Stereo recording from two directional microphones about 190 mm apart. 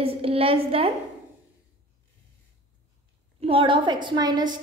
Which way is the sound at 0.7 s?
30° right (ahead or behind).